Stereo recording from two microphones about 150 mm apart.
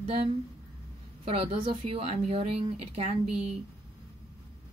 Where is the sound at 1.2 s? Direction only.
40° right (ahead or behind).